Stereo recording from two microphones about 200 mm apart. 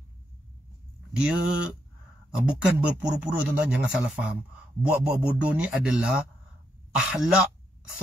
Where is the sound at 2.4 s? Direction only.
5° right (ahead or behind).